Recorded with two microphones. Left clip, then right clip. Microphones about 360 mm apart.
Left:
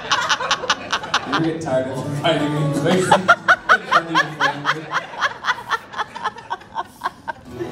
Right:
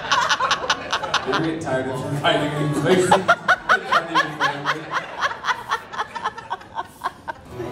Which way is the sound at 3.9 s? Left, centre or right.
Left.